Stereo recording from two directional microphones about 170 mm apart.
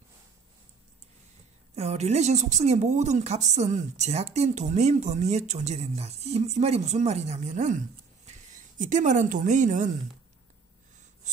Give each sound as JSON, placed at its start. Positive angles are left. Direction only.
{"t": 1.8, "sound": "a woman's voice", "side_deg": -40}